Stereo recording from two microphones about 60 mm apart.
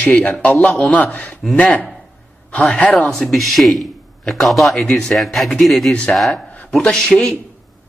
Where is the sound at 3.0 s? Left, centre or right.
Centre.